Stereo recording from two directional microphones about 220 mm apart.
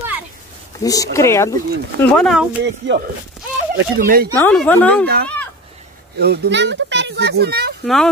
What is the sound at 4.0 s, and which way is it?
Speech, 45° right (ahead or behind).